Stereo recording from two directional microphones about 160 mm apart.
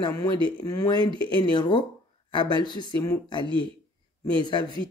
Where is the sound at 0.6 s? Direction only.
25° left (ahead or behind).